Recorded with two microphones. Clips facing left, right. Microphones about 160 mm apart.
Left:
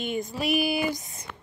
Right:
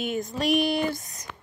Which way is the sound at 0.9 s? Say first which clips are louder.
Even; 25° left (ahead or behind).